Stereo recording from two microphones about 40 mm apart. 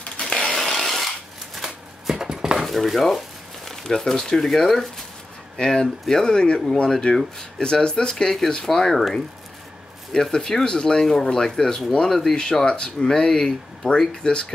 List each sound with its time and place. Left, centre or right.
0.0 s a sound: centre
0.5 s tools: centre
2.1 s cutlery: centre
2.6 s dishes: centre
3.6 s speech: centre
5.6 s speech: centre
10.1 s speech: centre